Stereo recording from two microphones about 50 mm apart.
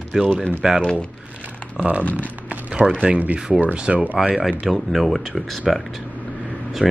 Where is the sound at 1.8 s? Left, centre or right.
Right.